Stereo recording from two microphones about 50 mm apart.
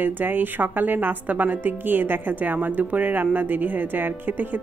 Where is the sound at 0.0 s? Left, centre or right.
Right.